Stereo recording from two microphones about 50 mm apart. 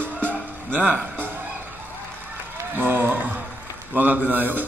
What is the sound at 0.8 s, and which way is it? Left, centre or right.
Speech, right.